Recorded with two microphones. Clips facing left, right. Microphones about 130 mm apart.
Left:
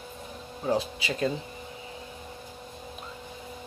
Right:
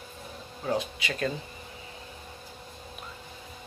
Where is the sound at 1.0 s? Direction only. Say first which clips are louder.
Left 2 dB; 35° left (ahead or behind).